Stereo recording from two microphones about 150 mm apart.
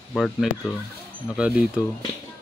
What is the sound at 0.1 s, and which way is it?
Speech, centre (ahead or behind).